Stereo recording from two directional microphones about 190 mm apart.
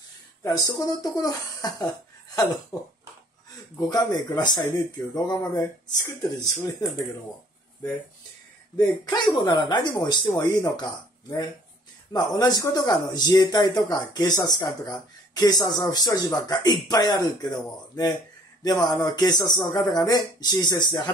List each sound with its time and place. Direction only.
0.4 s speech: 15° left (ahead or behind)
3.7 s speech: 20° left (ahead or behind)
9.3 s speech: 20° left (ahead or behind)